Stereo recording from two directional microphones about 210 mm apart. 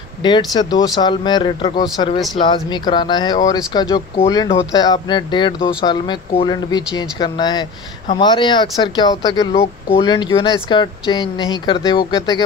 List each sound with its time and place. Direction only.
0.2 s speech: 20° left (ahead or behind)